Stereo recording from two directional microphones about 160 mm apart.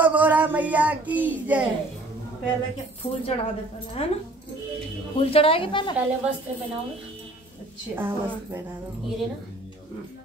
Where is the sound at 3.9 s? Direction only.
40° left (ahead or behind).